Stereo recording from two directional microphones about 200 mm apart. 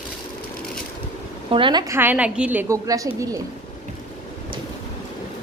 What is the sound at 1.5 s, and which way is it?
A woman's voice, 25° right (ahead or behind).